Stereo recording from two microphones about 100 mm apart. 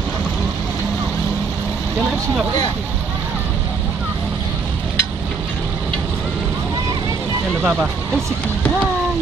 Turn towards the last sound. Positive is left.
turn(degrees=-15)  # may be behind; listen again after turning